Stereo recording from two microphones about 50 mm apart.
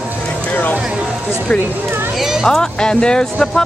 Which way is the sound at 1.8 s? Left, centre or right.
Right.